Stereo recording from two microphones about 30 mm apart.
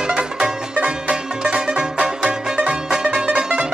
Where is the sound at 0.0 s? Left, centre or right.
Right.